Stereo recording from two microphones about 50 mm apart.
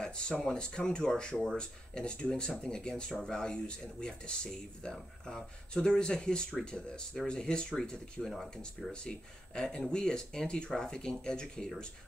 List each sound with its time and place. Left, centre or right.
0.0 s speech: centre
8.3 s speech: centre
9.0 s speech: centre